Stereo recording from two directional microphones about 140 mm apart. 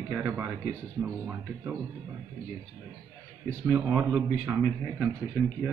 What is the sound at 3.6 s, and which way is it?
A man's voice, 15° right (ahead or behind).